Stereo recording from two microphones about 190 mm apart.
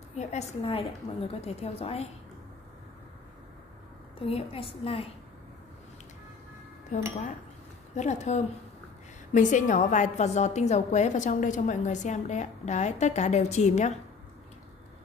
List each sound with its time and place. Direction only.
0.1 s a woman's voice: 35° left (ahead or behind)
4.2 s a woman's voice: 30° left (ahead or behind)
6.9 s a woman's voice: 40° left (ahead or behind)